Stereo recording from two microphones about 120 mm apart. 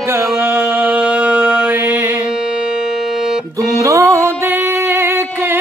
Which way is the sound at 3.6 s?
25° right (ahead or behind).